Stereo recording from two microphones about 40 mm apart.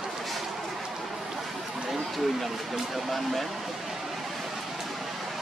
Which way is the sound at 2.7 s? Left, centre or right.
Centre.